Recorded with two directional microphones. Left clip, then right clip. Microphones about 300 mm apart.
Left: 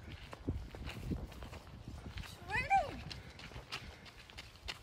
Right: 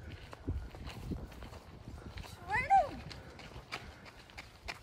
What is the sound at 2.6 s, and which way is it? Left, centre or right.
Cat, centre.